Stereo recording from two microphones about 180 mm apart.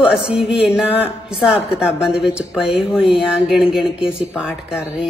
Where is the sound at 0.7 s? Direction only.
5° right (ahead or behind).